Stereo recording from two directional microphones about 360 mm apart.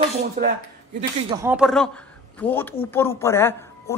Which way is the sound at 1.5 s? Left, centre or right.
Centre.